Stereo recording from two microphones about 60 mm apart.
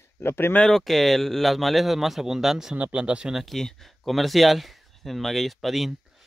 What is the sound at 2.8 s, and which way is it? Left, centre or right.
Speech, right.